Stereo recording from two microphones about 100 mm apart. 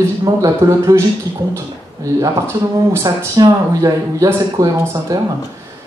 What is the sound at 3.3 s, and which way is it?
A man's voice, 40° right (ahead or behind).